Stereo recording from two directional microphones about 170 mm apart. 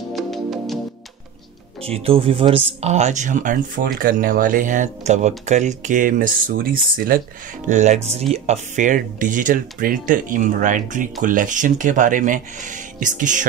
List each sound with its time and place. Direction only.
0.1 s music: centre (ahead or behind)
1.8 s speech: 35° right (ahead or behind); by 7.2 s 55° right (ahead or behind)
7.6 s speech: 45° right (ahead or behind)